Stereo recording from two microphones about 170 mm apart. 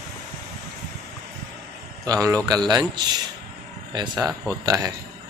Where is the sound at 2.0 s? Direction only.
20° right (ahead or behind).